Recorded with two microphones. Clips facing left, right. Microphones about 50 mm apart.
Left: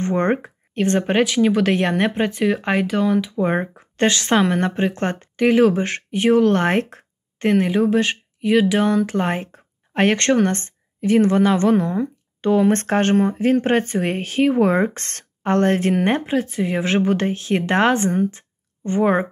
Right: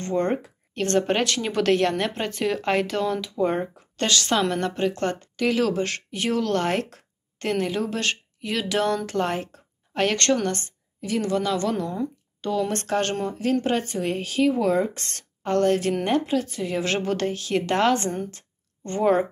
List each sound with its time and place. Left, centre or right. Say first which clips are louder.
0.0 s speech: left 5 dB; left
0.7 s speech: left 4 dB; centre
18.1 s speech: left 10 dB; centre